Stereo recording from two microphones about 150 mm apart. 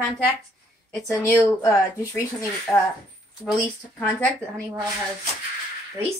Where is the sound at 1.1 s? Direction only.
20° left (ahead or behind).